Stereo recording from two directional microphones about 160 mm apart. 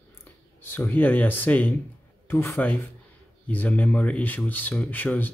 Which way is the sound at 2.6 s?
15° left (ahead or behind).